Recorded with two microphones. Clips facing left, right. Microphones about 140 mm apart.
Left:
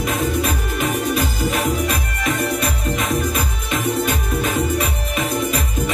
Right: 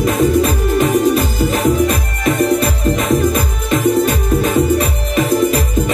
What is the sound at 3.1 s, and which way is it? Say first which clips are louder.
Music: right 7 dB; 35° right (ahead or behind).